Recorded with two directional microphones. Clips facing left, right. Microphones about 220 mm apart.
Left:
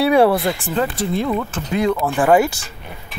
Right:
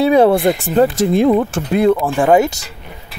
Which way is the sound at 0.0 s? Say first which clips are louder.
Right 3 dB; 20° right (ahead or behind).